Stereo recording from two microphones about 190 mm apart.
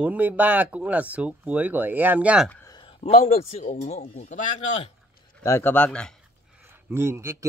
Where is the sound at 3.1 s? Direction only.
35° left (ahead or behind).